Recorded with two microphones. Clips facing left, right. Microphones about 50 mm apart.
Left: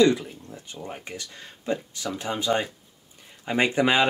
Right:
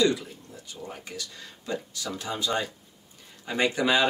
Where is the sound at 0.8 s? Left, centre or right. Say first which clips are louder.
Left 1 dB; left.